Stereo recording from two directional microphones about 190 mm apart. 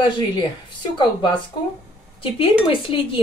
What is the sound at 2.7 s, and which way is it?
Speech, 25° left (ahead or behind).